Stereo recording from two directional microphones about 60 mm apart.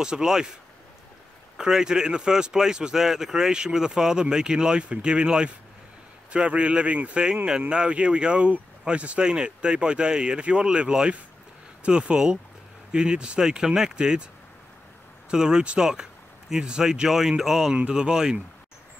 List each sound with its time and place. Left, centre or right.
0.0 s speech: centre
1.6 s speech: centre
15.2 s speech: centre
17.7 s speech: centre